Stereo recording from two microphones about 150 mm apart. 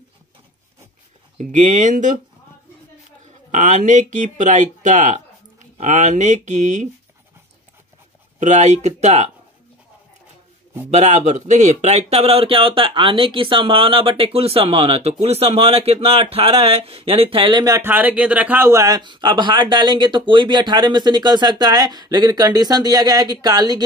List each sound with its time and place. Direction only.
1.4 s speech: 55° right (ahead or behind)
3.3 s speech: 55° right (ahead or behind)
8.4 s speech: 50° right (ahead or behind)
10.9 s speech: 50° right (ahead or behind); by 23.8 s 25° right (ahead or behind)